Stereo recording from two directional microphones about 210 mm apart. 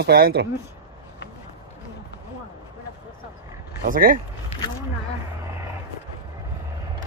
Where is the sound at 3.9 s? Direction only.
40° right (ahead or behind).